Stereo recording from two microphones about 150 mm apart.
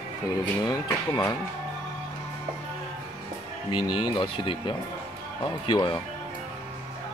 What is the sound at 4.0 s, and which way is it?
Speech, 35° left (ahead or behind).